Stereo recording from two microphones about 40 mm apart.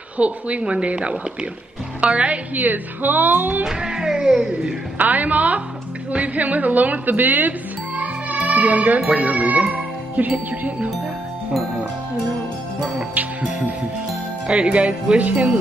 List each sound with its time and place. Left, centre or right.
0.2 s a woman's voice: right
2.5 s a woman's voice: right
3.6 s music: centre
4.9 s a woman's voice: right
13.4 s music: right
14.5 s a woman's voice: right